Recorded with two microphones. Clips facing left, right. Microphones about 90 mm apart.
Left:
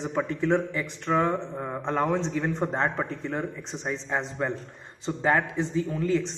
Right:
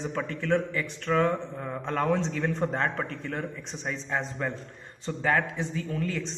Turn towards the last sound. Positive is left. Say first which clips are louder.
# left 6 dB
turn(degrees=15)  # may be behind; listen again after turning